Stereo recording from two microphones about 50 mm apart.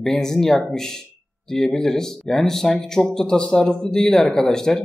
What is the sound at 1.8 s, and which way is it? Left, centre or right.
Speech, centre.